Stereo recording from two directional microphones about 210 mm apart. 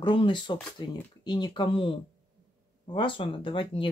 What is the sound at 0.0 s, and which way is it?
Speech, 25° left (ahead or behind).